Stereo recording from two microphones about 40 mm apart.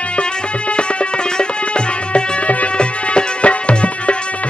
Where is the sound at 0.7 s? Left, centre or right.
Left.